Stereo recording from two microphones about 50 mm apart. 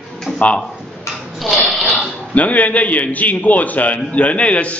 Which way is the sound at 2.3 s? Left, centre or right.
Left.